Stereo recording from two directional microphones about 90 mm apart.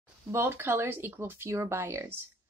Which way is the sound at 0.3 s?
25° right (ahead or behind).